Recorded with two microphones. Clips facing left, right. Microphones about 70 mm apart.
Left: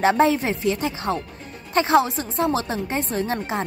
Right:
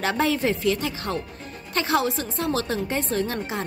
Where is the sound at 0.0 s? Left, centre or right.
Left.